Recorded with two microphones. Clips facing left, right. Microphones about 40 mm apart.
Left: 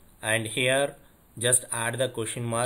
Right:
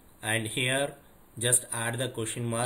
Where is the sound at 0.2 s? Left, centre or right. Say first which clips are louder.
Left 4 dB; centre.